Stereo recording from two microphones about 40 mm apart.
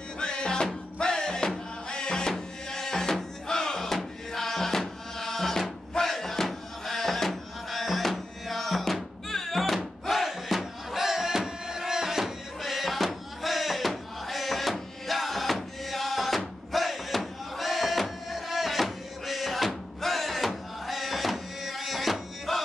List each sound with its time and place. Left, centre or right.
0.2 s music: left; by 9.8 s centre
10.0 s crowd: centre